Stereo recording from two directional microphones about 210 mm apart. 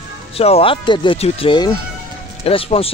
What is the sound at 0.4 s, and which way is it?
Speech, 30° left (ahead or behind).